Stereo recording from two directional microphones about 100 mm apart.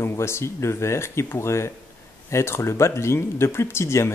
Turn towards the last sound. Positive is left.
turn(degrees=25)  # may be behind; listen again after turning